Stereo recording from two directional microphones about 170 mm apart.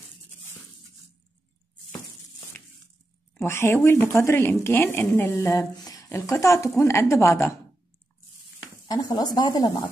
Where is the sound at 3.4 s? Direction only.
15° left (ahead or behind).